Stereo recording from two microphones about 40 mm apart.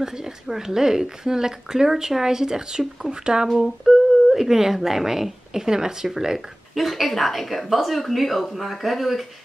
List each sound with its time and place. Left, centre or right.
0.0 s speech: centre
3.6 s speech: centre